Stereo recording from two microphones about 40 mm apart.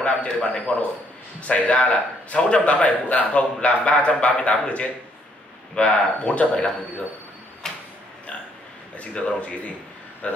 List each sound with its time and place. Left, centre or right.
0.0 s a man's voice: left
7.6 s a sound: centre
8.9 s a man's voice: left